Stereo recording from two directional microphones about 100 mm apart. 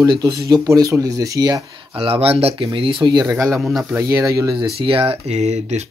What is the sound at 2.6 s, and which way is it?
Speech, 55° right (ahead or behind).